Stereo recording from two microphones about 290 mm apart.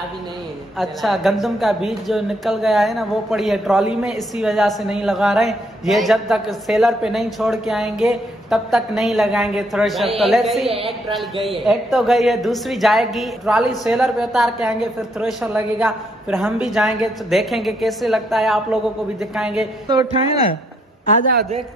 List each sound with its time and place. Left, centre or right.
0.7 s a woman's voice: centre
10.7 s speech: centre
11.6 s a woman's voice: centre
19.9 s speech: centre
21.3 s a woman's voice: right